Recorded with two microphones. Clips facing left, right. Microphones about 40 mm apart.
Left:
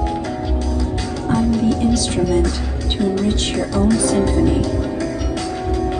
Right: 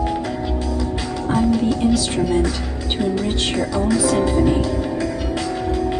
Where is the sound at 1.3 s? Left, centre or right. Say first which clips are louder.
Left 1 dB; centre.